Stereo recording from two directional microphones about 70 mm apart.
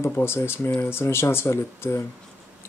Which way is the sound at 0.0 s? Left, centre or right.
Left.